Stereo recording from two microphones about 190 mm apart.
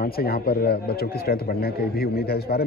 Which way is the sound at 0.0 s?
50° left (ahead or behind).